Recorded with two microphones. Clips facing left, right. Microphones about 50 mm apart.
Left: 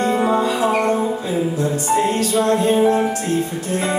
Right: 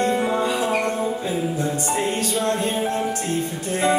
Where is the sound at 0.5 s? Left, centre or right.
Centre.